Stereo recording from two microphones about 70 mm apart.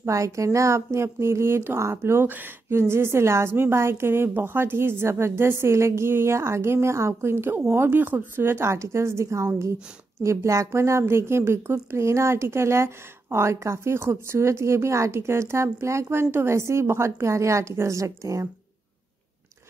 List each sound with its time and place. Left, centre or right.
0.0 s a woman's voice: right
2.2 s speech: right
2.7 s a woman's voice: right